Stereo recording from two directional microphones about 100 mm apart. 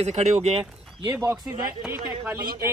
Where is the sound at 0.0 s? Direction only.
90° right.